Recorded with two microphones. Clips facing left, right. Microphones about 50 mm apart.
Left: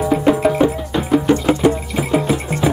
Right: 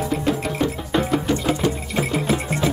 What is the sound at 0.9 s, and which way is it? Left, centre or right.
Music, centre.